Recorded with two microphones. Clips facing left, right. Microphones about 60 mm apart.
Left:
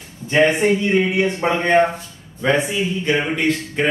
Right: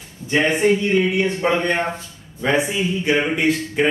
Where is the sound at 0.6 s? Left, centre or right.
Left.